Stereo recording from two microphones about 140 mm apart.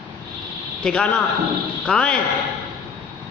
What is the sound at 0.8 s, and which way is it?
A man's voice, 10° left (ahead or behind).